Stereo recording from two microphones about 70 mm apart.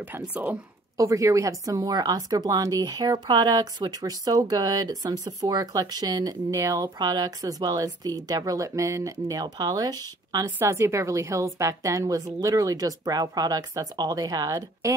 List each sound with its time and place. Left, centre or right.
0.0 s speech: right
0.9 s speech: right
2.8 s speech: right
6.5 s speech: right
10.6 s a woman's voice: right